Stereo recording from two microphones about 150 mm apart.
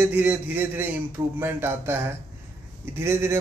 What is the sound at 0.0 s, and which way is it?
A man's voice, 10° right (ahead or behind).